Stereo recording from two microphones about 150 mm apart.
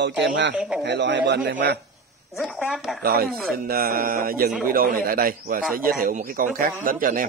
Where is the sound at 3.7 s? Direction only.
75° right (ahead or behind).